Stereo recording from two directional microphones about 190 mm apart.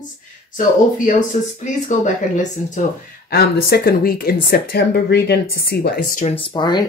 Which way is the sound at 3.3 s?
55° left (ahead or behind).